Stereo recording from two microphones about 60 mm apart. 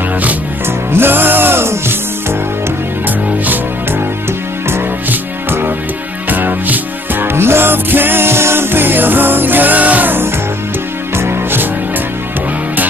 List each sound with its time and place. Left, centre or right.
0.9 s music: right
5.1 s music: right